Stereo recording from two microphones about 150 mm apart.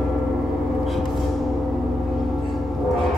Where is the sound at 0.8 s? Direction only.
Centre (ahead or behind).